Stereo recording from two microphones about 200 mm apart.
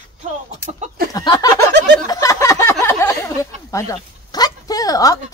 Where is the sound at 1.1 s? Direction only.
20° left (ahead or behind).